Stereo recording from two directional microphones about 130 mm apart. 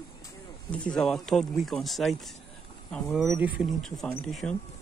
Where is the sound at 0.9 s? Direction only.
5° left (ahead or behind).